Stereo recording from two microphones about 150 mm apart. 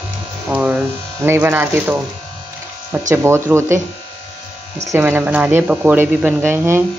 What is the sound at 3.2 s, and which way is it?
Speech, 15° right (ahead or behind).